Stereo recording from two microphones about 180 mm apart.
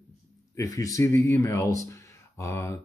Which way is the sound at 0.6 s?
20° left (ahead or behind).